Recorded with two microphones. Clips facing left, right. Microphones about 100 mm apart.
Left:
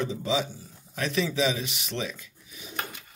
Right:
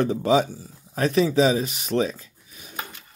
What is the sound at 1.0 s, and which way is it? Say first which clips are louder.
Speech: right 7 dB; 40° right (ahead or behind).